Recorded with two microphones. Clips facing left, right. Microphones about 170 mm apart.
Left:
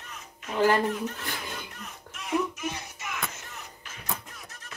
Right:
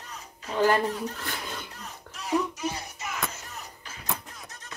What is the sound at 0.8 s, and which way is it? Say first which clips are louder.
Speech: left 1 dB; 35° right (ahead or behind).